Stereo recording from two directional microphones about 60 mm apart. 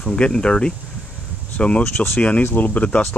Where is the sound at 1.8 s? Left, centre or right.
Left.